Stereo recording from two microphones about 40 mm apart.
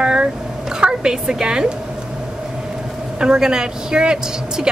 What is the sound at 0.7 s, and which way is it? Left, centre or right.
Speech, centre.